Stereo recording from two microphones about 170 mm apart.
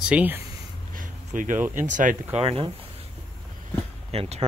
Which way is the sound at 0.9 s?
50° right (ahead or behind).